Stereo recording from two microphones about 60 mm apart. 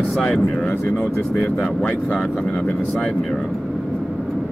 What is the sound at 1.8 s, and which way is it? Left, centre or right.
Speech, centre.